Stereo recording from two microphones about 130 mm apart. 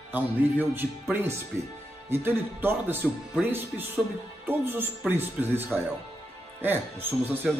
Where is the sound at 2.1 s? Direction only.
15° right (ahead or behind).